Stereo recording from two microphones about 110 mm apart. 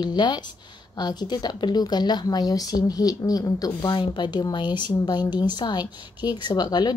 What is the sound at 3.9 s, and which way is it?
A woman's voice, 45° left (ahead or behind).